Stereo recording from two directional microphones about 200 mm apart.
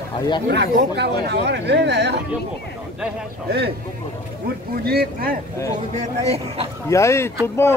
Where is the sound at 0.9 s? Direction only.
55° right (ahead or behind).